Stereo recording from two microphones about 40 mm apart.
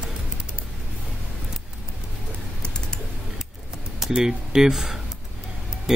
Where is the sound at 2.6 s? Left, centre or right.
Centre.